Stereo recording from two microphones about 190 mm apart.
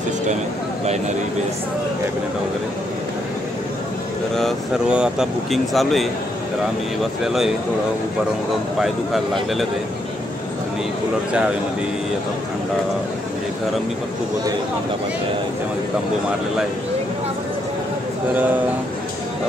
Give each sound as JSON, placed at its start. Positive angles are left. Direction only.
{"t": 4.4, "sound": "speech", "side_deg": 0}
{"t": 7.2, "sound": "speech", "side_deg": 0}
{"t": 8.7, "sound": "speech", "side_deg": 0}